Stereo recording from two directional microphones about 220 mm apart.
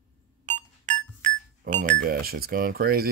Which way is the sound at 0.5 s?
35° right (ahead or behind).